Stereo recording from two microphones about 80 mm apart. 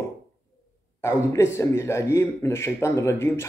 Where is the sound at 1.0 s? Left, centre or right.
Left.